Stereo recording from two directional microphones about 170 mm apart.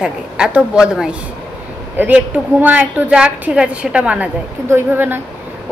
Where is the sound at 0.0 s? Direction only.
5° right (ahead or behind).